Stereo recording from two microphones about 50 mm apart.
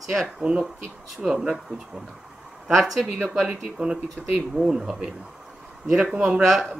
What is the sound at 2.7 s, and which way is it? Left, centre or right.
Speech, centre.